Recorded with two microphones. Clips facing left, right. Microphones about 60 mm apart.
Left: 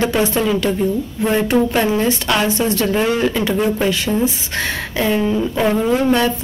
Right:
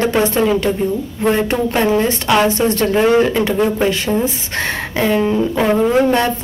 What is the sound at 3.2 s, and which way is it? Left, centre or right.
Speech, right.